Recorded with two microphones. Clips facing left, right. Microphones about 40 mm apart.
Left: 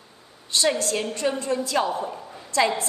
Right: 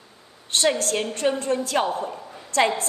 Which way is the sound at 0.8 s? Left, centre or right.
Right.